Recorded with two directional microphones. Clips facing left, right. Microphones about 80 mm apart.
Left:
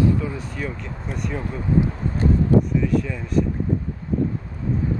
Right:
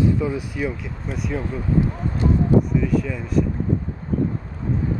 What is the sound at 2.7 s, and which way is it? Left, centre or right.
Speech, centre.